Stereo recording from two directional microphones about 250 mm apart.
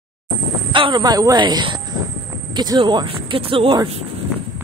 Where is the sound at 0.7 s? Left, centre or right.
Centre.